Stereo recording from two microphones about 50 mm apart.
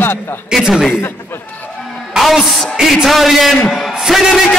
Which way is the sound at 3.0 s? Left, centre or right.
Centre.